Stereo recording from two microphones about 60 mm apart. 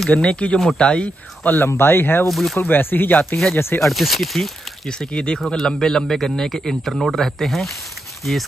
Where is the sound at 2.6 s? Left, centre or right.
Left.